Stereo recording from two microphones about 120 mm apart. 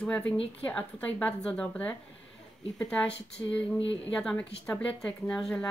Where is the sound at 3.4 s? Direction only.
20° left (ahead or behind).